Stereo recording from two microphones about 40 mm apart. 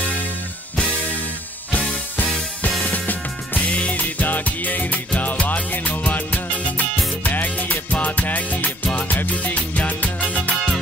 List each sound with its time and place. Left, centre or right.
2.8 s music: left
3.6 s music: left
3.9 s music: left